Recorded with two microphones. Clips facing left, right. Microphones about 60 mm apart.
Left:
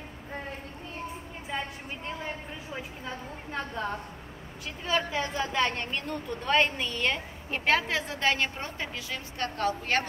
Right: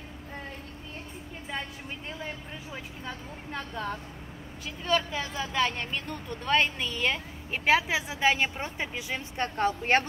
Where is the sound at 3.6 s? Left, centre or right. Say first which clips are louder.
Left 2 dB; left.